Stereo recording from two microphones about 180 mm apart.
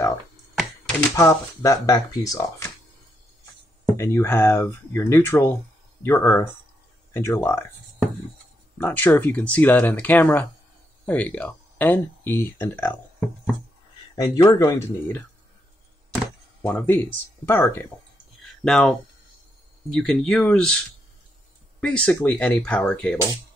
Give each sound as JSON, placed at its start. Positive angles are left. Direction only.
{"t": 1.1, "sound": "speech", "side_deg": 15}
{"t": 3.8, "sound": "speech", "side_deg": 15}
{"t": 8.7, "sound": "speech", "side_deg": 10}
{"t": 14.1, "sound": "speech", "side_deg": 20}
{"t": 16.6, "sound": "speech", "side_deg": 10}